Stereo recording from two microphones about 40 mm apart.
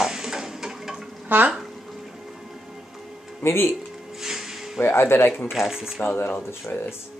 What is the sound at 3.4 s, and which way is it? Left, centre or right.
Speech, left.